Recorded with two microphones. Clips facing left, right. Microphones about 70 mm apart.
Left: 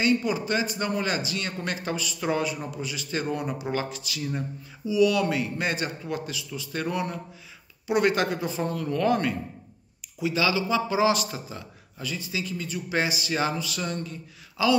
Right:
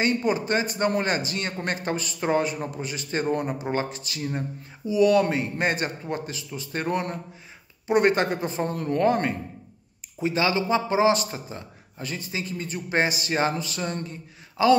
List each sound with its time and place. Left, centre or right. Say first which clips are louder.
0.0 s a man's voice: right 1 dB; right